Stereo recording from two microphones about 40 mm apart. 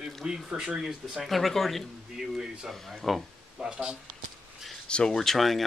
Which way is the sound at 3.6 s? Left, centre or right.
Right.